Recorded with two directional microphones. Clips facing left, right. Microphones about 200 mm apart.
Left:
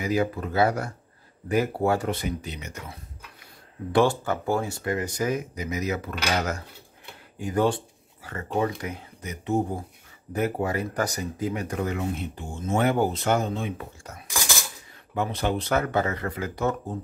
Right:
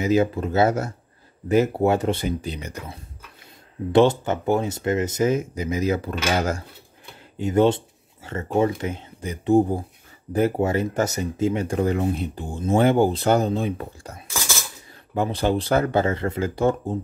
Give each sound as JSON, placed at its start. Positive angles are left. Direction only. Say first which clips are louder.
{"t": 0.0, "sound": "speech", "louder": "right 5 dB", "side_deg": -25}
{"t": 3.9, "sound": "speech", "louder": "right 5 dB", "side_deg": -20}
{"t": 7.3, "sound": "a sound", "louder": "right 5 dB", "side_deg": -25}
{"t": 8.5, "sound": "speech", "louder": "right 5 dB", "side_deg": -25}
{"t": 14.2, "sound": "cutlery", "louder": "right 1 dB", "side_deg": 15}
{"t": 15.1, "sound": "speech", "louder": "right 4 dB", "side_deg": -30}